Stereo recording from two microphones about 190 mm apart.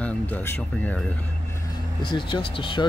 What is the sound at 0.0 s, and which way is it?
Speech, 10° left (ahead or behind).